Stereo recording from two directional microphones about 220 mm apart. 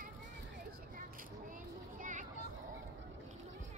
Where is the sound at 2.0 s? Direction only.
35° right (ahead or behind).